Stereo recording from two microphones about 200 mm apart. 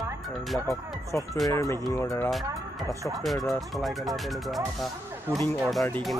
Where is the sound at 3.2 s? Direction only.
Centre (ahead or behind).